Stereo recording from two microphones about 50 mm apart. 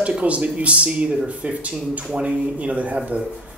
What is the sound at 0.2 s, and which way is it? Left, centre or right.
Speech, right.